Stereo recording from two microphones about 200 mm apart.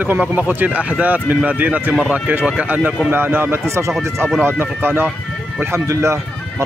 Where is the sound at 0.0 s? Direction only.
10° right (ahead or behind).